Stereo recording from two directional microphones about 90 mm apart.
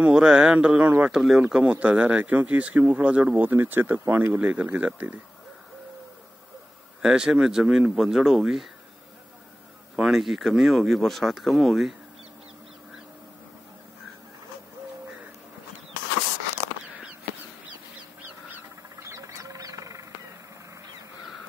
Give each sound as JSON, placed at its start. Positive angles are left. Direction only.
{"t": 0.0, "sound": "speech", "side_deg": -10}
{"t": 7.0, "sound": "speech", "side_deg": -10}
{"t": 9.9, "sound": "speech", "side_deg": -5}
{"t": 18.5, "sound": "a sound", "side_deg": -30}